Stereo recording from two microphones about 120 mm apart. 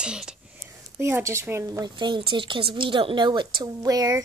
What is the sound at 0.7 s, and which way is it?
Speech, 20° right (ahead or behind).